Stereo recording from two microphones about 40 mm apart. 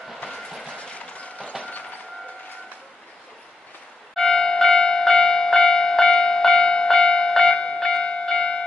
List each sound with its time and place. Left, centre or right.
0.3 s train: centre
0.7 s a sound: left
1.1 s mechanisms: left
1.6 s vehicle: left
4.1 s bell: centre
7.5 s a sound: left
8.0 s bell: left